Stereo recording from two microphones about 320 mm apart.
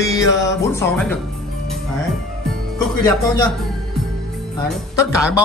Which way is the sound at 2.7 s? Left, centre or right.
Centre.